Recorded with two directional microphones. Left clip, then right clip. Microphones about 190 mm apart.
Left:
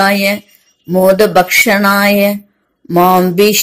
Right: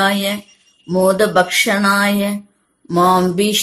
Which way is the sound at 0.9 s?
25° left (ahead or behind).